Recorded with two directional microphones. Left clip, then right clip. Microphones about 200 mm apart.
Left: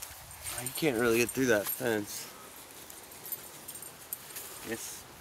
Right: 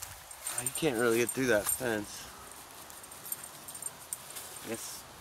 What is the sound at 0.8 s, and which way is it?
Speech, 35° left (ahead or behind).